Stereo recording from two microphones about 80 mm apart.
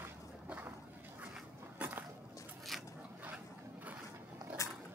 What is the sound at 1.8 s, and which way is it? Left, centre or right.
Biting, centre.